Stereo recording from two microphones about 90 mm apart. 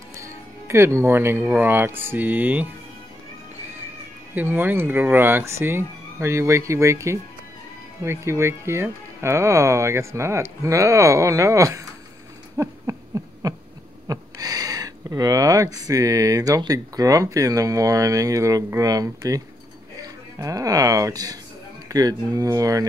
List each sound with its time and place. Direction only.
0.2 s speech: 30° right (ahead or behind)
4.4 s speech: 20° right (ahead or behind)
12.9 s a sound: 40° right (ahead or behind)
13.4 s owl: 40° right (ahead or behind)
14.0 s speech: 45° right (ahead or behind)